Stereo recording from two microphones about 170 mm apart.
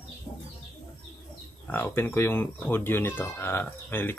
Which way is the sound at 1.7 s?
10° left (ahead or behind).